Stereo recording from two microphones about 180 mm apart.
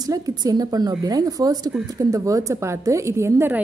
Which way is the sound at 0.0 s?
20° right (ahead or behind).